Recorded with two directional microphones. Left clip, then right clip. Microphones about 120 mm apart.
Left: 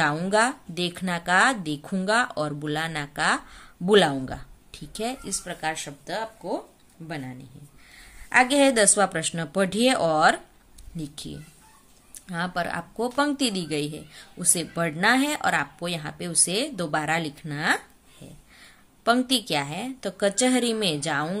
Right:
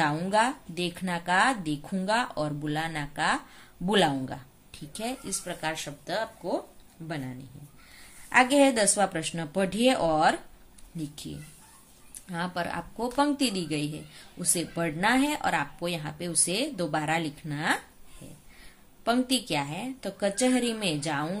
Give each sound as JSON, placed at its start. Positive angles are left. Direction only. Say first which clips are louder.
{"t": 0.0, "sound": "speech", "louder": "left 3 dB", "side_deg": 35}
{"t": 8.3, "sound": "speech", "louder": "left 2 dB", "side_deg": 30}